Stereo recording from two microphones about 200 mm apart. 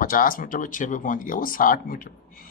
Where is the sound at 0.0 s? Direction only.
45° left (ahead or behind).